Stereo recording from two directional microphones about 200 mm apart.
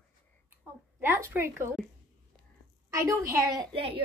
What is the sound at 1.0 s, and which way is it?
Speech, 10° right (ahead or behind).